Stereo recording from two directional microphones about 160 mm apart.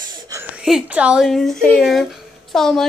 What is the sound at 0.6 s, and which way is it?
Speech, 5° right (ahead or behind).